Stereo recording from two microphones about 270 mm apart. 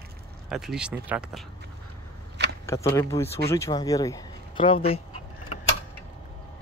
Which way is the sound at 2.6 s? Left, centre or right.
Centre.